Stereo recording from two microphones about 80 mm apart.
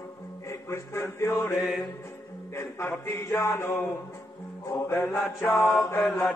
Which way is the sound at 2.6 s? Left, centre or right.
Left.